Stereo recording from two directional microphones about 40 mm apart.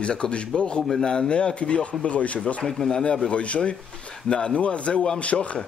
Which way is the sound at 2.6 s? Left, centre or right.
Centre.